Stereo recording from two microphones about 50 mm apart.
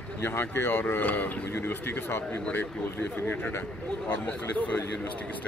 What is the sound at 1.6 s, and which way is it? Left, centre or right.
Speech, left.